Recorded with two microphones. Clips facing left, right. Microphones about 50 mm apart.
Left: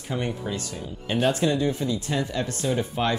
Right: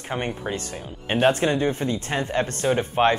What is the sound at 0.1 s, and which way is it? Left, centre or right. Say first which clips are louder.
Speech: right 1 dB; right.